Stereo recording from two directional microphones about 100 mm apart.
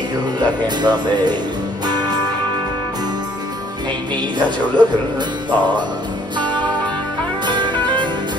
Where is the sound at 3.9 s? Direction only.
50° right (ahead or behind).